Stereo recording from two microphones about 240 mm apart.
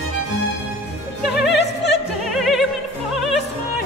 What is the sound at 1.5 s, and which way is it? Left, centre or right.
Opera, left.